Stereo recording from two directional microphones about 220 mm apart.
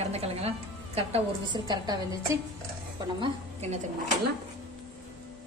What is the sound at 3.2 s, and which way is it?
Speech, 30° right (ahead or behind).